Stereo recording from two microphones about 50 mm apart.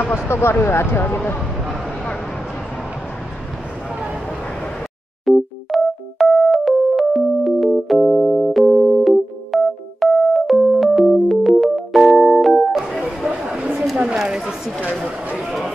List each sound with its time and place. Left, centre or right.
0.1 s speech: left
5.2 s music: centre
13.4 s a sound: centre